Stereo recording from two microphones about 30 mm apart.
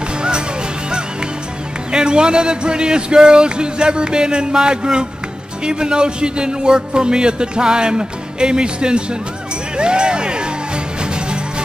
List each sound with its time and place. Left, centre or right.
1.9 s a man's voice: right